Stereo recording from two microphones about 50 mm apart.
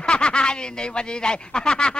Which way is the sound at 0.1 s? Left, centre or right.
Centre.